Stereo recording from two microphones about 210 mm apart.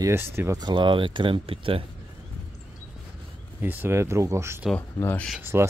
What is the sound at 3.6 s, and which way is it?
Speech, 10° right (ahead or behind).